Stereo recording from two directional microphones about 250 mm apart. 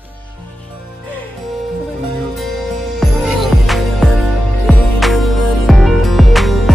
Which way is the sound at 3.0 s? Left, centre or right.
Centre.